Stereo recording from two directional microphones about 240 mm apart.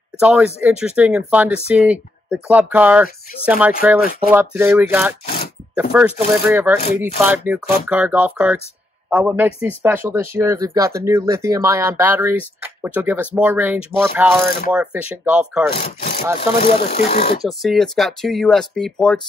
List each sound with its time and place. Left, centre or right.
0.2 s speech: centre
4.0 s speech: left
4.3 s speech: centre
5.2 s a sound: left
5.8 s speech: centre
15.7 s speech: left
17.4 s speech: centre